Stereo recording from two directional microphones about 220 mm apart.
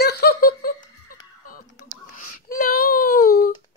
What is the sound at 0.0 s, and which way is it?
Giggle, 45° left (ahead or behind).